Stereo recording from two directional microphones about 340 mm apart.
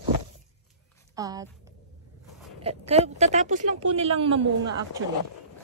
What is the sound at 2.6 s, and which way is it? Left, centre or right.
Speech, centre.